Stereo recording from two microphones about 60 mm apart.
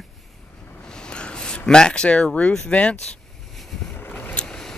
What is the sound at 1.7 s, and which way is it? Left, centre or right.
Speech, centre.